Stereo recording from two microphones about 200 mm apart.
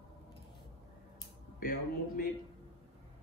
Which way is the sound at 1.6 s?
45° left (ahead or behind).